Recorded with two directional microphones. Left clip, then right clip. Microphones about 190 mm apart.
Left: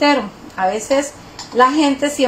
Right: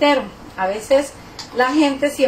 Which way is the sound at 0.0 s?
35° left (ahead or behind).